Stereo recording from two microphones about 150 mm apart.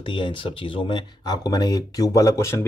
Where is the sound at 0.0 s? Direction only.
35° left (ahead or behind).